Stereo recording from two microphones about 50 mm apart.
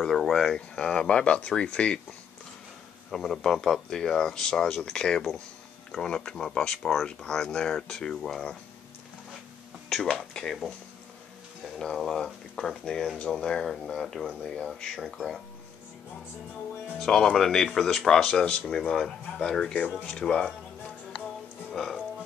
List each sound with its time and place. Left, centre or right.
0.0 s speech: centre; by 2.0 s left
3.1 s speech: centre
10.0 s speech: centre
11.8 s speech: centre
14.4 s speech: centre
14.7 s speech: centre
17.0 s speech: centre